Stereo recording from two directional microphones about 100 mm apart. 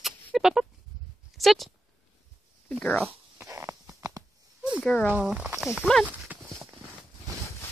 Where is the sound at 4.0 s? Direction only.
40° right (ahead or behind).